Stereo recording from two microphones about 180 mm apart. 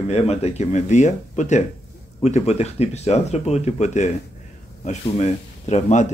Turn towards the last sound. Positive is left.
turn(degrees=40)  # may be behind; listen again after turning